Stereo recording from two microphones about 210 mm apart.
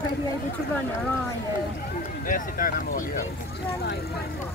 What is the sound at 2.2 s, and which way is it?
Speech, 40° left (ahead or behind).